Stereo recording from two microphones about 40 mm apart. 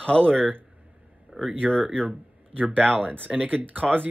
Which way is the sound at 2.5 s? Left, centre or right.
Right.